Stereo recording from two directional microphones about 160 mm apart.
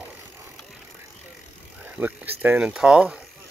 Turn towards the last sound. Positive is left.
turn(degrees=-5)  # may be behind; listen again after turning